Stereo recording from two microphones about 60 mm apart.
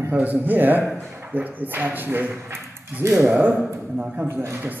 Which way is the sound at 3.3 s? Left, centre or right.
Right.